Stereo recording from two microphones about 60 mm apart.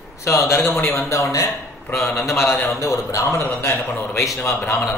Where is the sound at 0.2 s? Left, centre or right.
Left.